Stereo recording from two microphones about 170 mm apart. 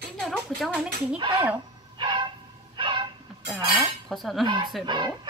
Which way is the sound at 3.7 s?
Centre (ahead or behind).